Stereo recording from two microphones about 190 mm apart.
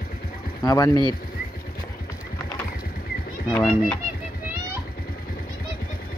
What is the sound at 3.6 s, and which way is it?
Speech, 5° left (ahead or behind).